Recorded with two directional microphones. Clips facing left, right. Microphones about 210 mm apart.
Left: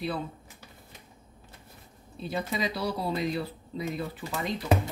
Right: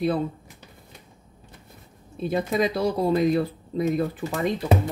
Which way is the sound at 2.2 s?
50° right (ahead or behind).